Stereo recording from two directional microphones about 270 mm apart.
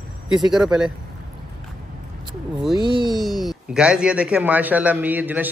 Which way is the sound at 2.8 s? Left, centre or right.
Centre.